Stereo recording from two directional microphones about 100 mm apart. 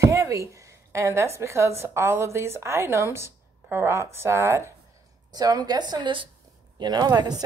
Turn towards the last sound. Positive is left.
turn(degrees=-45)  # may be behind; listen again after turning